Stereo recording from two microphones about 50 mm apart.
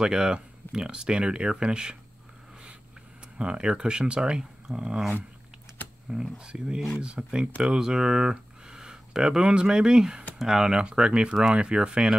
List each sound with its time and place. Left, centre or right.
0.0 s speech: centre
3.3 s speech: centre
6.3 s speech: centre